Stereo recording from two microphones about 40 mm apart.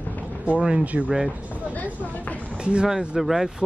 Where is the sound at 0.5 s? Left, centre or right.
Right.